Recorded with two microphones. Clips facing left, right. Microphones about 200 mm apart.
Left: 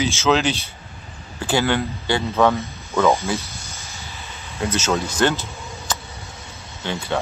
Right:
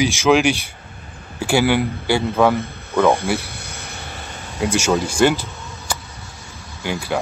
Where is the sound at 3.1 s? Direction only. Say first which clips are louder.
Right 2 dB; 55° right (ahead or behind).